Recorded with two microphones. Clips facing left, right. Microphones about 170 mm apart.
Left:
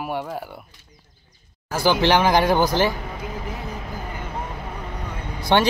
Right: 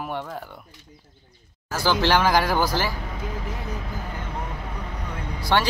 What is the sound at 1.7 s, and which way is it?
Speech, 15° left (ahead or behind).